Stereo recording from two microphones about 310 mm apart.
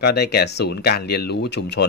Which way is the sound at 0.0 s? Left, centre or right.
Left.